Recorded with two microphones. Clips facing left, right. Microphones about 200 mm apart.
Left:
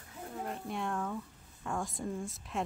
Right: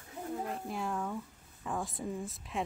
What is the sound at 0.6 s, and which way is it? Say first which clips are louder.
Speech: even; centre (ahead or behind).